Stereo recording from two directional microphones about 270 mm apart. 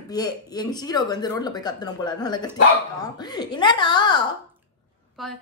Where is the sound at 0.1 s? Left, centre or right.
Centre.